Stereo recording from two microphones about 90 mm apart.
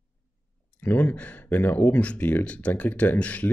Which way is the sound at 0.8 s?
20° left (ahead or behind).